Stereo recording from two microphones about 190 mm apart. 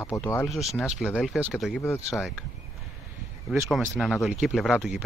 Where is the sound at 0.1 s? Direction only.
15° left (ahead or behind).